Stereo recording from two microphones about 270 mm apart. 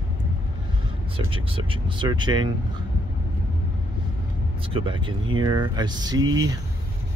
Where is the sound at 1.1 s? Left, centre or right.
Centre.